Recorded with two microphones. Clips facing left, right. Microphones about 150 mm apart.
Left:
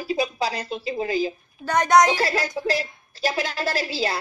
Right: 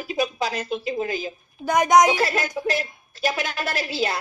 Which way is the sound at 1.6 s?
10° right (ahead or behind).